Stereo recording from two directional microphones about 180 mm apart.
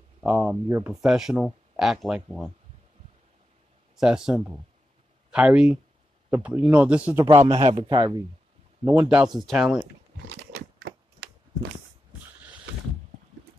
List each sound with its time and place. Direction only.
0.2 s speech: 5° right (ahead or behind)
3.9 s speech: 5° right (ahead or behind)
7.5 s a man's voice: 30° right (ahead or behind)
9.1 s speech: 5° right (ahead or behind)
10.8 s a sound: 70° right (ahead or behind)